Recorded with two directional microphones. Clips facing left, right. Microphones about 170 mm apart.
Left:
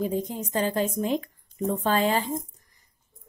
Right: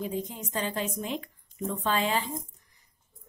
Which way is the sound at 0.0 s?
40° left (ahead or behind).